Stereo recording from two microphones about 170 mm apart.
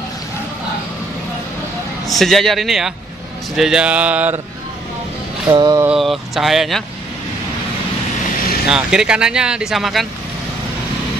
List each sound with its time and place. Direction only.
2.0 s speech: centre (ahead or behind)
5.5 s mantra: 20° right (ahead or behind)
5.9 s speech: centre (ahead or behind)
8.6 s speech: 5° right (ahead or behind)